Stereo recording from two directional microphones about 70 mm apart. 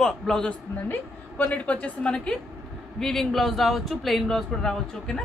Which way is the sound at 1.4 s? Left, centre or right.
Centre.